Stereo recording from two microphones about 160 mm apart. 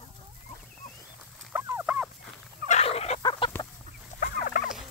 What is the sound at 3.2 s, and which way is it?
Chicken, 30° left (ahead or behind).